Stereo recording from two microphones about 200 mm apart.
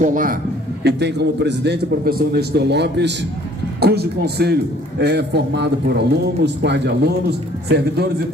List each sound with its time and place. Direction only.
0.0 s a man's voice: 40° right (ahead or behind)
0.8 s a man's voice: 55° right (ahead or behind)